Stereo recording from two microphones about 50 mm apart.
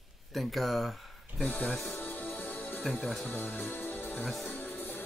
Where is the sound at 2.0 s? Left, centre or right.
Left.